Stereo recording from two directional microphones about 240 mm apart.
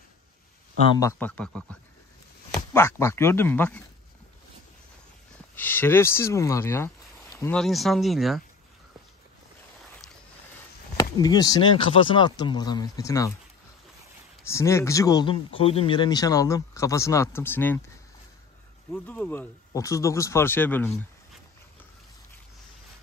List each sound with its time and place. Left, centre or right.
0.9 s speech: centre
5.6 s speech: centre
11.0 s speech: centre
14.4 s speech: centre
18.9 s speech: centre